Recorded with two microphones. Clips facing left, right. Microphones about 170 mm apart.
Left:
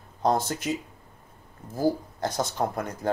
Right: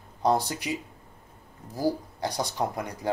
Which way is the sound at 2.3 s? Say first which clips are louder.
Left 2 dB; 15° right (ahead or behind).